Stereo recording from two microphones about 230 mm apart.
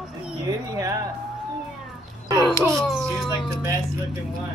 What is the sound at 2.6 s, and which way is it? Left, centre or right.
Speech, centre.